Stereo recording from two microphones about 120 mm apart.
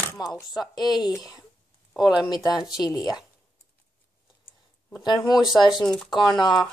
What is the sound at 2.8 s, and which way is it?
Speech, 35° left (ahead or behind).